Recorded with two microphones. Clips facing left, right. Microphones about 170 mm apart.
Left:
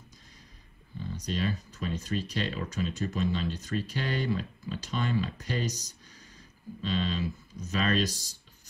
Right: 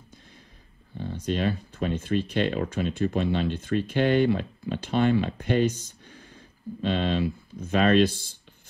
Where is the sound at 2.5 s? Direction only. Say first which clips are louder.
Right 6 dB; 55° right (ahead or behind).